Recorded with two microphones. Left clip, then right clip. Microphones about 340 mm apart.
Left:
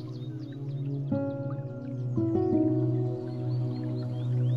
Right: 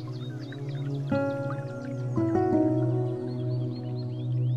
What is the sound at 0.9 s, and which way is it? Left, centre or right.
Music, right.